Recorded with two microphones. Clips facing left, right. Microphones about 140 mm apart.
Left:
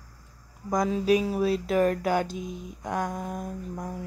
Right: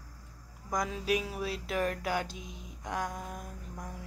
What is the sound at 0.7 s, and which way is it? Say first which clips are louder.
Speech: left 8 dB; 30° left (ahead or behind).